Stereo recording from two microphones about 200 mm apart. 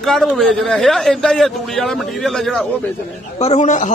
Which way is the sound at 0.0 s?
Centre (ahead or behind).